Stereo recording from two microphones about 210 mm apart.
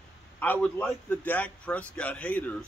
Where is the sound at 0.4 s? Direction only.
10° left (ahead or behind).